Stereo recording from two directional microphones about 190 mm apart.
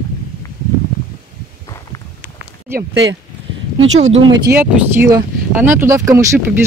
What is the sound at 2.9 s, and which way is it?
Speech, 75° right (ahead or behind).